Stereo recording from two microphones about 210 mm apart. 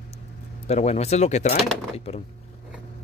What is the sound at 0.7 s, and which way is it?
Speech, 30° left (ahead or behind).